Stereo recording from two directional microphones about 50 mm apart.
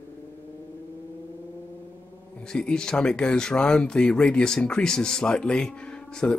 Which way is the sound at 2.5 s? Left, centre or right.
Centre.